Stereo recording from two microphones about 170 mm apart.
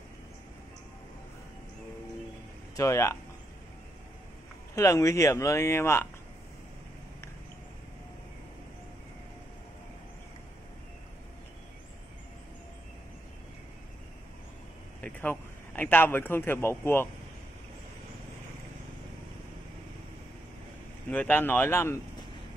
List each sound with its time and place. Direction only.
2.7 s speech: 20° left (ahead or behind)
4.7 s speech: 15° left (ahead or behind)
15.0 s a man's voice: 10° left (ahead or behind)
21.1 s speech: 10° left (ahead or behind)